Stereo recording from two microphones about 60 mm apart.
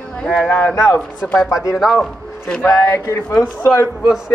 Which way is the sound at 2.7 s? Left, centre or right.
Left.